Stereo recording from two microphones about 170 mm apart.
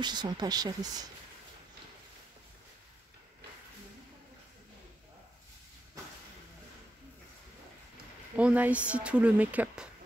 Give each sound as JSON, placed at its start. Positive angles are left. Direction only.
{"t": 0.0, "sound": "speech", "side_deg": -25}
{"t": 8.4, "sound": "a woman's voice", "side_deg": -10}